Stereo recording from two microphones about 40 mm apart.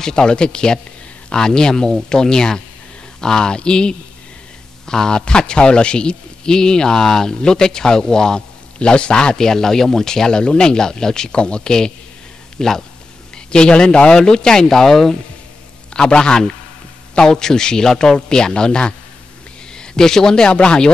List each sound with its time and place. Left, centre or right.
0.0 s a man's voice: centre
15.9 s a man's voice: left